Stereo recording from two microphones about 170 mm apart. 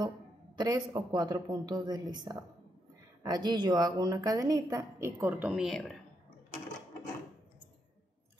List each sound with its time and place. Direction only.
0.6 s a woman's voice: 25° right (ahead or behind); by 5.9 s 5° left (ahead or behind)